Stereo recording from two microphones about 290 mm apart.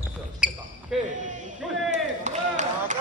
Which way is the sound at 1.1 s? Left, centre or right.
Right.